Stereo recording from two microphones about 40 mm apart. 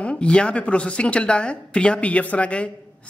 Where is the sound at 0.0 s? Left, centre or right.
Left.